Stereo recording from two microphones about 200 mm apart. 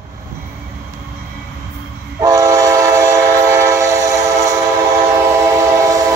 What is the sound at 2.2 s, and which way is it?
Train, 15° right (ahead or behind).